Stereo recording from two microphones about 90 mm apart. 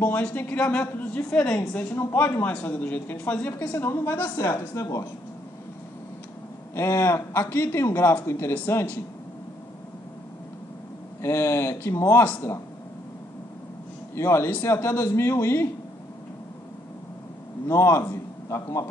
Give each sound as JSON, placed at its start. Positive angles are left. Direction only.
{"t": 0.0, "sound": "a woman's voice", "side_deg": 15}
{"t": 3.7, "sound": "speech", "side_deg": 30}
{"t": 6.7, "sound": "speech", "side_deg": 30}
{"t": 11.2, "sound": "speech", "side_deg": 30}
{"t": 14.1, "sound": "speech", "side_deg": 30}
{"t": 17.6, "sound": "a man's voice", "side_deg": 30}